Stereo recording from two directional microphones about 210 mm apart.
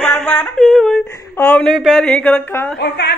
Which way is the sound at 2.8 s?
50° left (ahead or behind).